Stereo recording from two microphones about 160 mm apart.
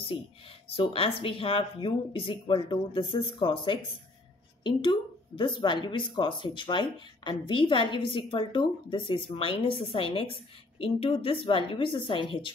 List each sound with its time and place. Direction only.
0.7 s speech: 35° left (ahead or behind)